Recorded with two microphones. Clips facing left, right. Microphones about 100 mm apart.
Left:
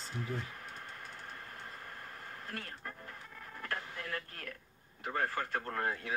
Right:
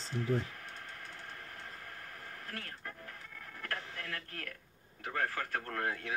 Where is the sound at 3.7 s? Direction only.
25° left (ahead or behind).